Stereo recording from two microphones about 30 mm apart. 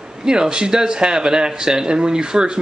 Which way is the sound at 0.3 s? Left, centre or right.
Right.